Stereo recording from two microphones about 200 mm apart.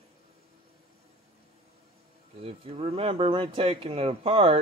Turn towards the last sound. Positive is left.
turn(degrees=-30)  # may be behind; listen again after turning